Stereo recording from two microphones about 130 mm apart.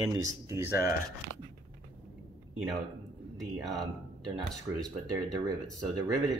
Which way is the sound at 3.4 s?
Centre (ahead or behind).